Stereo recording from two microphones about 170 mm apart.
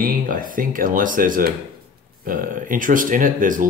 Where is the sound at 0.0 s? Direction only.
55° right (ahead or behind).